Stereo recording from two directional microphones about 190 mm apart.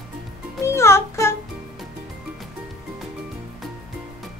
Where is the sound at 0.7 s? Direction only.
15° left (ahead or behind).